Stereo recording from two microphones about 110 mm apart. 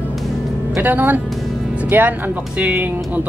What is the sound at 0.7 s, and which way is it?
Speech, 15° right (ahead or behind).